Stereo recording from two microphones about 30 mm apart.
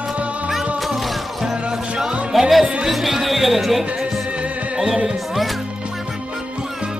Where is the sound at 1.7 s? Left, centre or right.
Right.